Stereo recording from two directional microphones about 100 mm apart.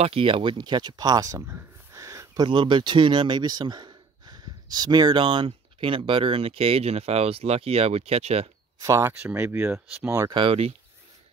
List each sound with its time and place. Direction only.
0.0 s speech: 65° right (ahead or behind); by 2.4 s 35° right (ahead or behind)
2.4 s speech: 55° right (ahead or behind); by 8.5 s 90° right
8.7 s speech: 30° right (ahead or behind)
10.3 s speech: 70° right (ahead or behind)